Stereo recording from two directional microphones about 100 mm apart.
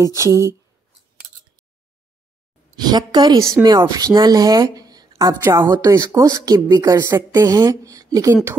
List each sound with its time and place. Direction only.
0.0 s a woman's voice: 35° right (ahead or behind)
2.8 s a woman's voice: 45° right (ahead or behind)
3.6 s speech: 15° right (ahead or behind)
3.9 s speech: 45° right (ahead or behind)
5.4 s a woman's voice: 25° right (ahead or behind)